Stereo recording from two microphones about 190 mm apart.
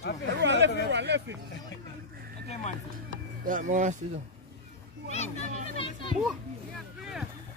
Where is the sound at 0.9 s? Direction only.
65° right (ahead or behind).